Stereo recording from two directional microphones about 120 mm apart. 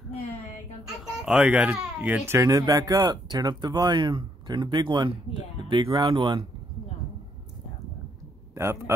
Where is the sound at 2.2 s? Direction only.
25° right (ahead or behind); by 6.4 s 40° right (ahead or behind).